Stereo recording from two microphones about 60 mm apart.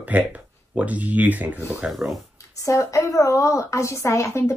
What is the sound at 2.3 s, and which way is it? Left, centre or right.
A woman's voice, left.